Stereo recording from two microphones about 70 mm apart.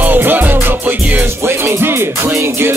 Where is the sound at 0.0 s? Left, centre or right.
Right.